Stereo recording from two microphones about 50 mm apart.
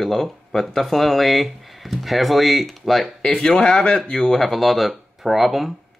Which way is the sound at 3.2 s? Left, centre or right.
Left.